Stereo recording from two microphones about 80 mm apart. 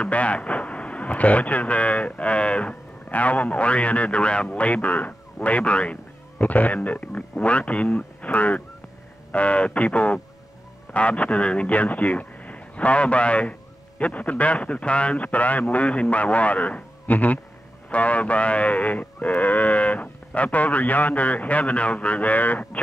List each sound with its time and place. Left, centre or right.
0.0 s a man's voice: centre